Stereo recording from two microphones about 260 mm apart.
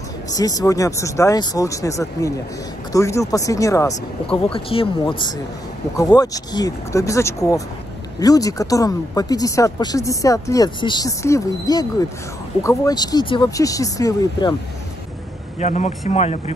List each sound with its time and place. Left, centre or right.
0.3 s speech: centre
15.6 s speech: left